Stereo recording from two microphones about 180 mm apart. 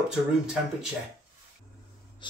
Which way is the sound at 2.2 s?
25° left (ahead or behind).